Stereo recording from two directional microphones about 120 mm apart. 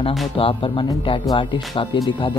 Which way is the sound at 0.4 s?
50° left (ahead or behind).